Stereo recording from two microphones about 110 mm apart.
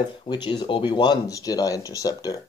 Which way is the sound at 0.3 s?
40° left (ahead or behind).